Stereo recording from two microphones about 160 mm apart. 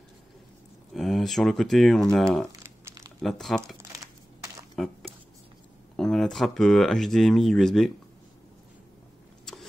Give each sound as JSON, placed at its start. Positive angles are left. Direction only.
{"t": 0.9, "sound": "speech", "side_deg": 0}
{"t": 2.6, "sound": "crumpling", "side_deg": -20}
{"t": 3.2, "sound": "speech", "side_deg": 0}
{"t": 3.9, "sound": "a sound", "side_deg": -20}
{"t": 4.7, "sound": "dishes", "side_deg": 0}
{"t": 5.9, "sound": "speech", "side_deg": 5}